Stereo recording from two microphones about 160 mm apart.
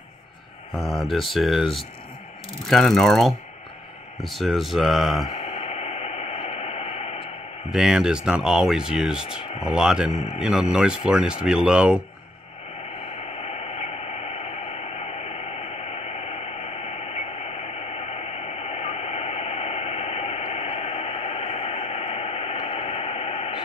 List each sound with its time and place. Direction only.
0.7 s speech: centre (ahead or behind)
5.3 s radio: 40° left (ahead or behind)
7.7 s speech: 5° right (ahead or behind)
10.1 s a man's voice: 40° left (ahead or behind)
10.4 s speech: 5° right (ahead or behind)
13.0 s radio: 40° left (ahead or behind)